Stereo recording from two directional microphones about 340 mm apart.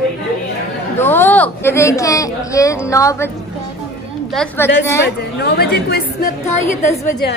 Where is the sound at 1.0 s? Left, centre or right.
Centre.